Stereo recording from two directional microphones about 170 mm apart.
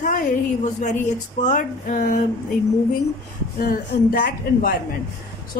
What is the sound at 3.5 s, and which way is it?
A woman's voice, 60° left (ahead or behind).